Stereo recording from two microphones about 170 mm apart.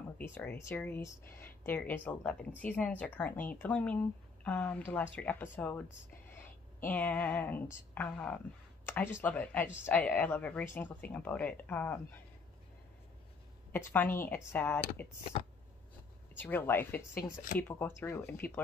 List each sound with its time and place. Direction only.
0.2 s a woman's voice: 10° left (ahead or behind)
13.7 s a woman's voice: 10° left (ahead or behind)
15.3 s a sound: 40° left (ahead or behind)
16.3 s speech: 10° left (ahead or behind)